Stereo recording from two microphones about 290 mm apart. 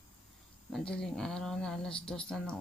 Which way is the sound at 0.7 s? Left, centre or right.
Centre.